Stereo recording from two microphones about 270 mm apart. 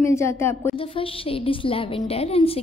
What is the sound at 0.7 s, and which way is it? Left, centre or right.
A woman's voice, centre.